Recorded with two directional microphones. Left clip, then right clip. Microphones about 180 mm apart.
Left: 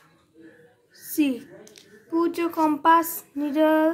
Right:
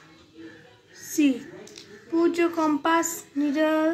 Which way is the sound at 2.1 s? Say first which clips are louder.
Right 2 dB; 45° left (ahead or behind).